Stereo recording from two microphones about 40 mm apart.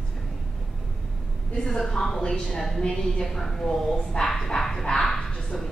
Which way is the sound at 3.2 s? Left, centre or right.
Centre.